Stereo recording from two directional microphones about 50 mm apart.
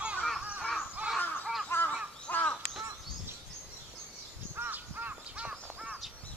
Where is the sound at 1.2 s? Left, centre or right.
Left.